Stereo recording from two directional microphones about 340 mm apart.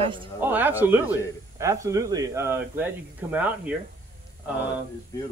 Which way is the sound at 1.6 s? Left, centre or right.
Centre.